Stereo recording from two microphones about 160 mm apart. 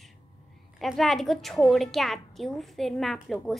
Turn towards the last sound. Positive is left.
turn(degrees=0)  # may be behind; listen again after turning